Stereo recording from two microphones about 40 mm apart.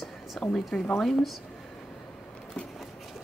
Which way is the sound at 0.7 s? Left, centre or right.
Centre.